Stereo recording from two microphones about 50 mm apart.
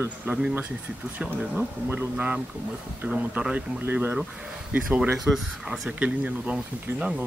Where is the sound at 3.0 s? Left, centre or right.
Right.